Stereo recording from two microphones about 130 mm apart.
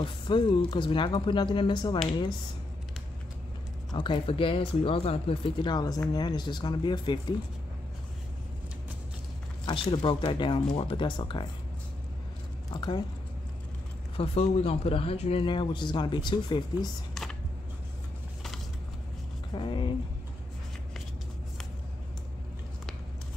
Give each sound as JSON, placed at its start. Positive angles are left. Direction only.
{"t": 0.0, "sound": "speech", "side_deg": 40}
{"t": 3.9, "sound": "speech", "side_deg": 35}
{"t": 9.7, "sound": "speech", "side_deg": 40}
{"t": 12.7, "sound": "speech", "side_deg": 35}
{"t": 14.1, "sound": "speech", "side_deg": 50}
{"t": 15.4, "sound": "speech", "side_deg": 40}
{"t": 17.1, "sound": "computer keyboard", "side_deg": 5}
{"t": 19.5, "sound": "speech", "side_deg": 40}